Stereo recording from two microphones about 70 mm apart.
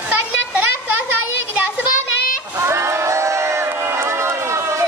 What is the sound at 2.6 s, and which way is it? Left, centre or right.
Crowd, right.